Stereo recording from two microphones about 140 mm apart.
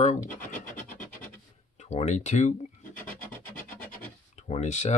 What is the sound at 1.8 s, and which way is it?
Speech, 55° left (ahead or behind).